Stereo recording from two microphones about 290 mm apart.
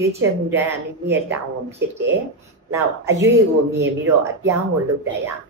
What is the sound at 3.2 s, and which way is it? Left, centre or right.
Speech, right.